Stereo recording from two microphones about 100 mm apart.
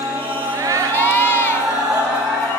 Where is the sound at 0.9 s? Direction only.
20° left (ahead or behind).